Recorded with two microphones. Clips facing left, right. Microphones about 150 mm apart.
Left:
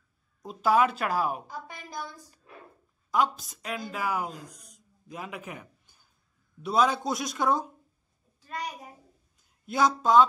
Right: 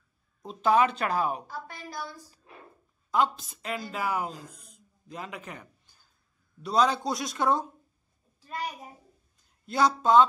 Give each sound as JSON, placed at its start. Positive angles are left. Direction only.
{"t": 0.5, "sound": "a man's voice", "side_deg": 5}
{"t": 1.5, "sound": "a woman's voice", "side_deg": 20}
{"t": 3.1, "sound": "a man's voice", "side_deg": 0}
{"t": 4.6, "sound": "a sound", "side_deg": 5}
{"t": 6.6, "sound": "a man's voice", "side_deg": 5}